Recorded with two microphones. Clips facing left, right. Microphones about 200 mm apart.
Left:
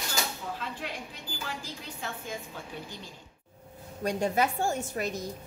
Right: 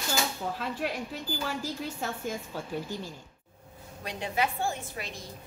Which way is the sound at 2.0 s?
45° right (ahead or behind).